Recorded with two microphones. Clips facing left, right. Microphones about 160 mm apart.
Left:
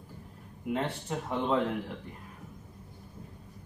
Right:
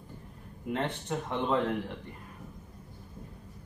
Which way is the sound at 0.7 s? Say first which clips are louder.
Even; 5° left (ahead or behind).